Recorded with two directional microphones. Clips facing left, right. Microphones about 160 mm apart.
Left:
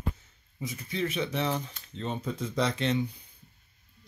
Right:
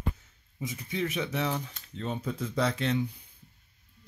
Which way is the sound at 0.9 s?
15° right (ahead or behind).